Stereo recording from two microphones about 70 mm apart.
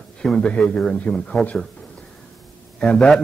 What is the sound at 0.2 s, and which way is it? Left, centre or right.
Speech, centre.